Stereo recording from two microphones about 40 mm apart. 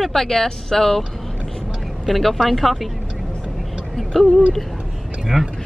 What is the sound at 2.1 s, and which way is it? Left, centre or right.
Speech, centre.